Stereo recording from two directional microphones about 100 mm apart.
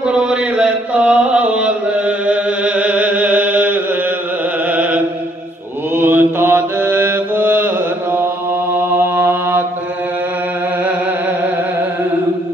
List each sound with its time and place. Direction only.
0.1 s mantra: 10° right (ahead or behind)
4.6 s chant: 15° right (ahead or behind)
5.9 s mantra: 20° right (ahead or behind)